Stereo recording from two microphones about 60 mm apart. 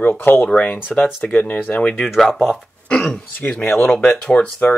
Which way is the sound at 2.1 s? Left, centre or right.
Centre.